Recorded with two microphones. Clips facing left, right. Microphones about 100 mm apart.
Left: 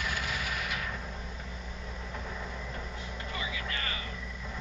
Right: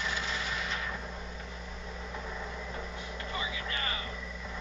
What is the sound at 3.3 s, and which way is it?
Vehicle, 25° right (ahead or behind).